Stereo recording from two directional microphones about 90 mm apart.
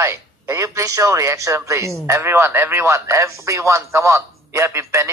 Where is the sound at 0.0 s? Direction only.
30° right (ahead or behind).